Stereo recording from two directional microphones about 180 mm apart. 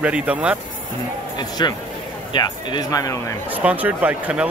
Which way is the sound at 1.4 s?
20° left (ahead or behind).